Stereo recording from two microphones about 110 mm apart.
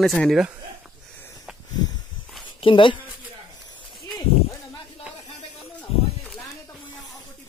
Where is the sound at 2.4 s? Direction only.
50° left (ahead or behind).